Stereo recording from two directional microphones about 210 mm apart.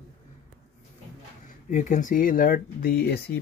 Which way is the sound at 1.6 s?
35° left (ahead or behind).